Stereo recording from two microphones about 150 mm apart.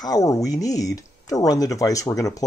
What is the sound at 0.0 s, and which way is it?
Speech, 25° left (ahead or behind).